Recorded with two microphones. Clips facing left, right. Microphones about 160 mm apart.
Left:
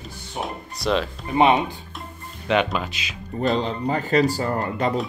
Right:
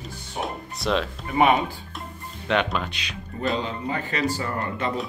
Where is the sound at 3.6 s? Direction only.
40° left (ahead or behind).